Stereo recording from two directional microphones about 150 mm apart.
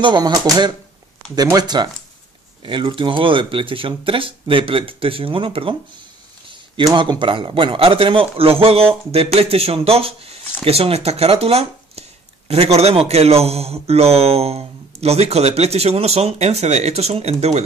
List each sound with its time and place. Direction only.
0.0 s speech: 30° right (ahead or behind)
6.9 s speech: 30° right (ahead or behind)